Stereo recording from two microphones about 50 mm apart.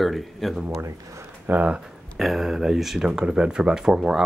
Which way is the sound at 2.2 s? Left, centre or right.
Centre.